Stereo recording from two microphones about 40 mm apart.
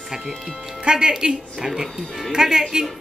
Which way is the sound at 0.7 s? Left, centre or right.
Right.